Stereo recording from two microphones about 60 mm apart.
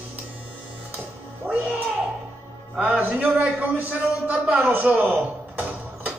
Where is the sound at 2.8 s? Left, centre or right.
Right.